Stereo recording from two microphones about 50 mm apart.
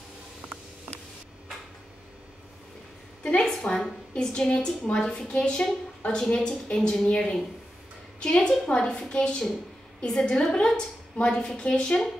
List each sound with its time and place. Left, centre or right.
3.3 s a woman's voice: centre